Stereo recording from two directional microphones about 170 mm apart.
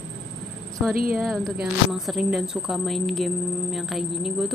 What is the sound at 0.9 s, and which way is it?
Speech, 60° right (ahead or behind).